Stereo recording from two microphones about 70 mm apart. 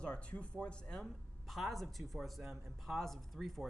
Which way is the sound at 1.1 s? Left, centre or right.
Centre.